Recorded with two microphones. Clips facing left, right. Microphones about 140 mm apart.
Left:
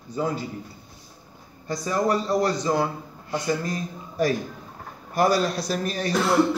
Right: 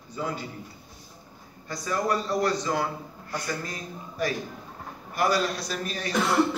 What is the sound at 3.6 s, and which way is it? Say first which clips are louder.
A man's voice: left 6 dB; 35° left (ahead or behind).